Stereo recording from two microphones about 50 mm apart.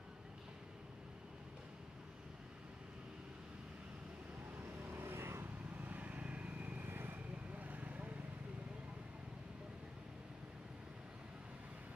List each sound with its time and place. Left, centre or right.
4.8 s vehicle: right
5.8 s vehicle: right
6.9 s vehicle: right
7.5 s vehicle: right